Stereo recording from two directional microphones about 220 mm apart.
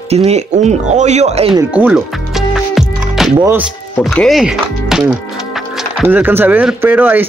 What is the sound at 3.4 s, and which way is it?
Speech, 10° right (ahead or behind).